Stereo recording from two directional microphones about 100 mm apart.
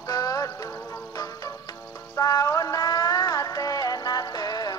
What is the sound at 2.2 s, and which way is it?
Music, 40° left (ahead or behind).